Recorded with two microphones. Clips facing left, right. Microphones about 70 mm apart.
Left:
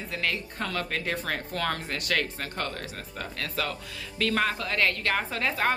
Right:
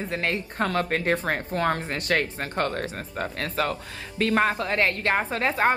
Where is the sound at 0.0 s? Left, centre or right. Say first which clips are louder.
Right 4 dB; right.